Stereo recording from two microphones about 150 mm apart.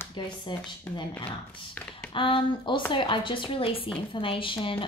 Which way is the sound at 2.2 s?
35° left (ahead or behind).